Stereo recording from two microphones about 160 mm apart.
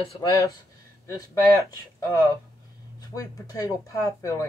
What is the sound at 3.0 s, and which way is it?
Speech, 20° left (ahead or behind).